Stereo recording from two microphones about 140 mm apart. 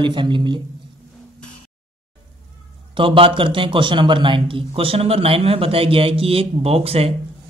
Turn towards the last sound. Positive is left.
turn(degrees=-45)  # may be behind; listen again after turning